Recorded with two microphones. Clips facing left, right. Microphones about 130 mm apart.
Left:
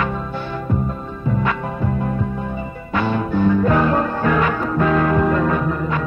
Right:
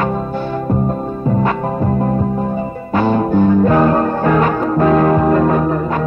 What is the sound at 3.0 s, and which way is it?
Music, 40° right (ahead or behind).